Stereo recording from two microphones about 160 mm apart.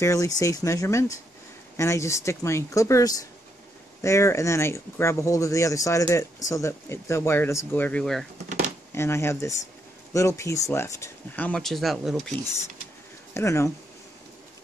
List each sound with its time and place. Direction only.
0.0 s speech: 20° left (ahead or behind); by 8.3 s 5° left (ahead or behind)
8.9 s speech: 15° left (ahead or behind); by 12.4 s centre (ahead or behind)
13.3 s speech: 15° left (ahead or behind)